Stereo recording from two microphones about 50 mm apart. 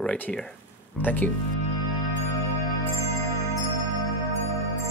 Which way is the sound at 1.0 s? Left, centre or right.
Left.